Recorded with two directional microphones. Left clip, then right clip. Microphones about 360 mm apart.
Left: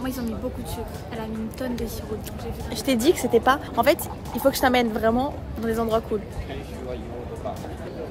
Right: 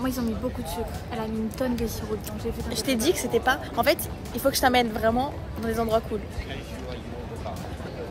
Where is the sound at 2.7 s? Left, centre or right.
Centre.